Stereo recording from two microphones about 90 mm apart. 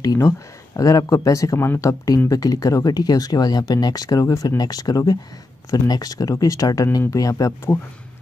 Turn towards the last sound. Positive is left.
turn(degrees=40)  # may be behind; listen again after turning